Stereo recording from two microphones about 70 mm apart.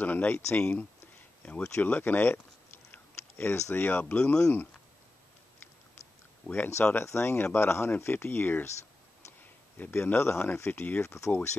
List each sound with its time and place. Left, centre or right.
0.0 s speech: left
2.9 s a sound: left
3.7 s speech: left
6.4 s speech: left
11.0 s speech: left